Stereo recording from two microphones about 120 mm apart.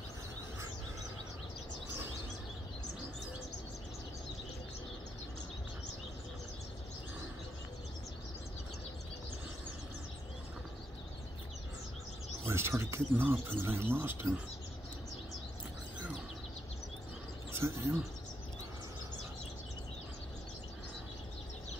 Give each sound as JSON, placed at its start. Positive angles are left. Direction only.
{"t": 12.4, "sound": "speech", "side_deg": -20}
{"t": 17.5, "sound": "speech", "side_deg": -20}